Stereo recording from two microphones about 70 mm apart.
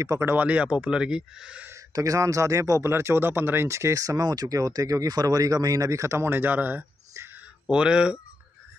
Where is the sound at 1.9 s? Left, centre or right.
Right.